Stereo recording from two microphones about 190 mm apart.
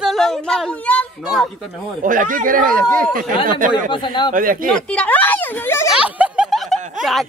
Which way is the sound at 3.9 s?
25° left (ahead or behind).